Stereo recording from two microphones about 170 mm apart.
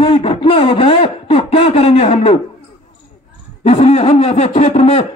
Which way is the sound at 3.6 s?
40° left (ahead or behind).